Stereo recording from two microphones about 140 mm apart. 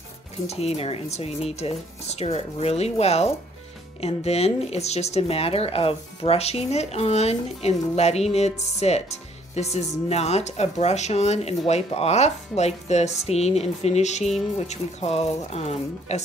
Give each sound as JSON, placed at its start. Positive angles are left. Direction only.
{"t": 0.5, "sound": "speech", "side_deg": 45}